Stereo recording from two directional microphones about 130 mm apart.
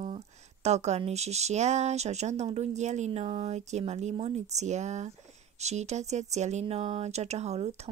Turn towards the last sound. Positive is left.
turn(degrees=-55)  # may be behind; listen again after turning